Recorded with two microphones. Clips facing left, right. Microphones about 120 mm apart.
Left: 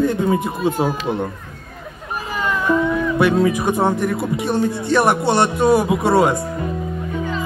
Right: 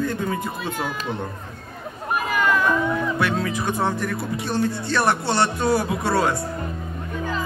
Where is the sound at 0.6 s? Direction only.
45° left (ahead or behind).